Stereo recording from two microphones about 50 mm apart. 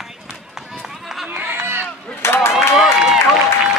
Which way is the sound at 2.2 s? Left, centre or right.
Left.